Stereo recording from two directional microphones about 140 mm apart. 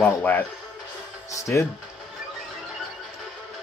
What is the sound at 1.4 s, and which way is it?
Speech, 20° left (ahead or behind).